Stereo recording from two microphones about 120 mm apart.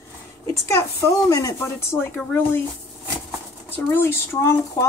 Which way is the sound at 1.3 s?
30° left (ahead or behind).